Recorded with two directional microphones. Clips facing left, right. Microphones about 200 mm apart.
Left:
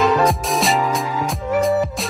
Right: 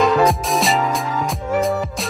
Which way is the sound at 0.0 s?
Centre (ahead or behind).